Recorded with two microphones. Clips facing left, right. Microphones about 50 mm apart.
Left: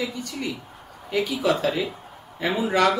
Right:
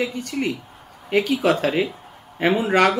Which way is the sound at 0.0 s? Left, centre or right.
Right.